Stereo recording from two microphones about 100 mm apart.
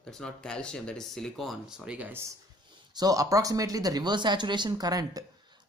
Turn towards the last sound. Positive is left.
turn(degrees=-40)  # may be behind; listen again after turning